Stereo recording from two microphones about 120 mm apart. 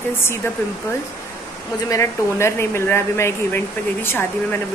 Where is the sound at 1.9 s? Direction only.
25° left (ahead or behind).